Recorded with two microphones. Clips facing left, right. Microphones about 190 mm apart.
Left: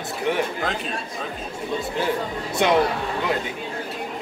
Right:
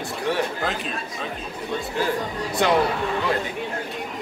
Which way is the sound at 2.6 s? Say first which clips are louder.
Left 1 dB; 20° left (ahead or behind).